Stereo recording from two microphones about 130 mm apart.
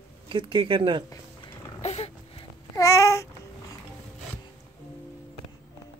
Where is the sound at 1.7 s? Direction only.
55° left (ahead or behind).